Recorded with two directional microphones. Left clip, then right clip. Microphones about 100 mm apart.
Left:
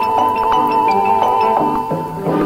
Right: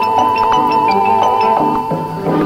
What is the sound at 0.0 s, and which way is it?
Music, 30° left (ahead or behind).